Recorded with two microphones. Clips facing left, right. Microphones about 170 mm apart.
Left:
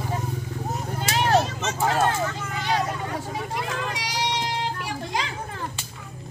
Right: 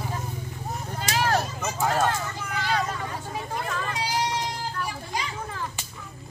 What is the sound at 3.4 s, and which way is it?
Vehicle, 90° left.